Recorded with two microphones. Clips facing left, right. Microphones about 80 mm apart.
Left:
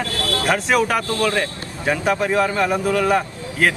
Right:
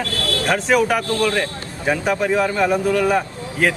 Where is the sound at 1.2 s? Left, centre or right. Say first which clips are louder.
Right 1 dB; left.